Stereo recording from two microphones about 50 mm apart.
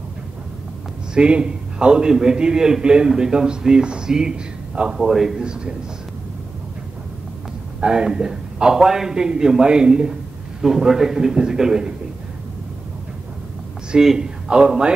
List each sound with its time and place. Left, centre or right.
1.1 s a man's voice: centre
4.9 s a man's voice: centre
7.8 s a man's voice: centre
13.9 s speech: centre